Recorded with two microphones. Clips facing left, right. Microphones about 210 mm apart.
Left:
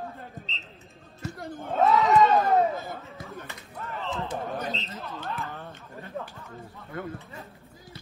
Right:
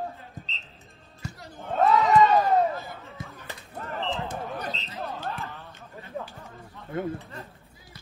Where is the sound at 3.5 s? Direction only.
35° right (ahead or behind).